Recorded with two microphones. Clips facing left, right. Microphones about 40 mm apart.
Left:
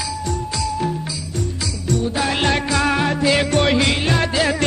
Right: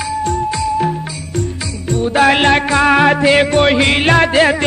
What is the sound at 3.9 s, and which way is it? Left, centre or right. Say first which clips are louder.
Music: right 8 dB; right.